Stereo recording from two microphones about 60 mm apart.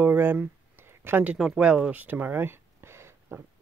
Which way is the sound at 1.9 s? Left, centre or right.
Right.